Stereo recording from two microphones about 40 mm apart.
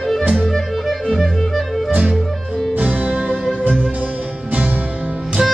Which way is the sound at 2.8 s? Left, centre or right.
Right.